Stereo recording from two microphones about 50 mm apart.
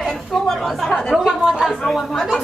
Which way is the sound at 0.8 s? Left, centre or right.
Centre.